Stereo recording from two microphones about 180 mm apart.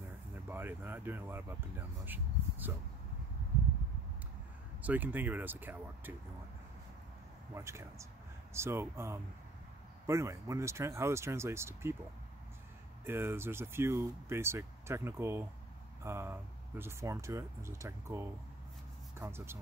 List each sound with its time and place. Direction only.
0.5 s speech: 10° right (ahead or behind)
4.8 s speech: 10° right (ahead or behind)
7.5 s speech: 15° right (ahead or behind)
13.0 s speech: 15° right (ahead or behind)